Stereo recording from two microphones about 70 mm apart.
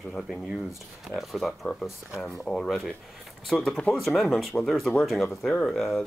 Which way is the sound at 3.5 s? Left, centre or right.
Centre.